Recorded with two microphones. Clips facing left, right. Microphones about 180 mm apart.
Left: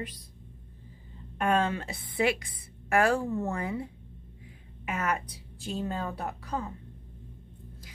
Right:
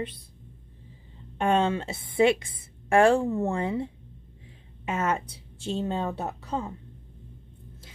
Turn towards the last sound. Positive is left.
turn(degrees=-25)  # may be behind; listen again after turning